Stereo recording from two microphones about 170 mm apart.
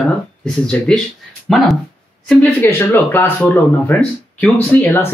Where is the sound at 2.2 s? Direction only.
5° left (ahead or behind).